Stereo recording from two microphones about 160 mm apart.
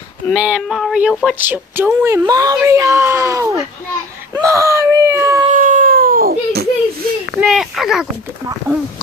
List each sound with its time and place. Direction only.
0.3 s speech: 5° right (ahead or behind); by 3.6 s 20° right (ahead or behind)
4.4 s whimper: 20° right (ahead or behind)
5.5 s baby cry: 55° right (ahead or behind); by 7.1 s 75° right (ahead or behind)
7.3 s a sound: centre (ahead or behind)